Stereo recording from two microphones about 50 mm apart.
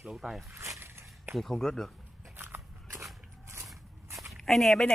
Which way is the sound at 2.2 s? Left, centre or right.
Right.